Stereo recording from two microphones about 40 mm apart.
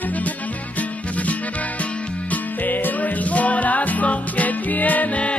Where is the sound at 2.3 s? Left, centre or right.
Left.